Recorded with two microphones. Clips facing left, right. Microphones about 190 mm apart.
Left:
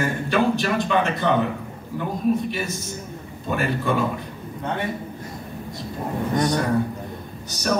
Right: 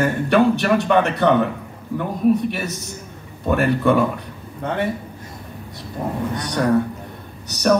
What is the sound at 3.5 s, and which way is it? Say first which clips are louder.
Speech: right 6 dB; 60° right (ahead or behind).